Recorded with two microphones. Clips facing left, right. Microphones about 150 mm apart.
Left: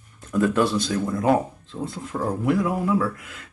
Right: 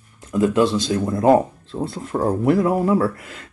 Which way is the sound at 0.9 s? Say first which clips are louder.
Right 5 dB; 35° right (ahead or behind).